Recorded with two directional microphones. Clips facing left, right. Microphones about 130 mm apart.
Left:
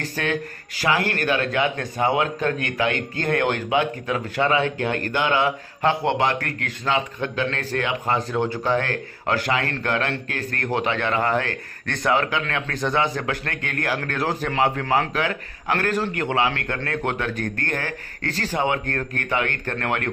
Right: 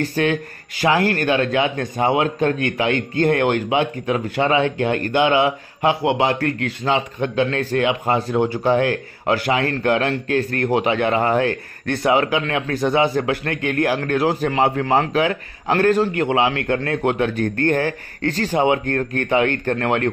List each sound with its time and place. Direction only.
0.0 s speech: 15° right (ahead or behind)
0.8 s speech: 30° right (ahead or behind)